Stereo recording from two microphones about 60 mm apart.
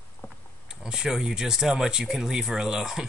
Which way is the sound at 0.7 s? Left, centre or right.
Centre.